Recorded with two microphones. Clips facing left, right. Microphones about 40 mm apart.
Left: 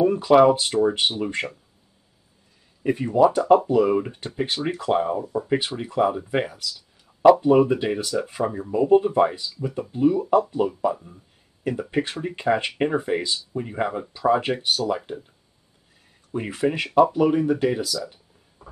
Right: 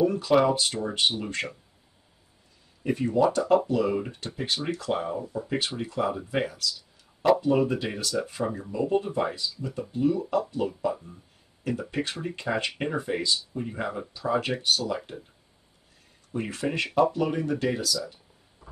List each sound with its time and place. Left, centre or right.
0.0 s a sound: left
0.5 s speech: centre
2.8 s speech: centre
11.9 s speech: left
16.3 s speech: centre